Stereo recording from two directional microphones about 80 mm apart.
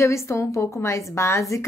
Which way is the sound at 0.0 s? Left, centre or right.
Left.